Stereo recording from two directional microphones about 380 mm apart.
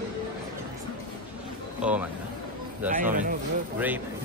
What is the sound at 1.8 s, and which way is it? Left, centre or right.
Speech, centre.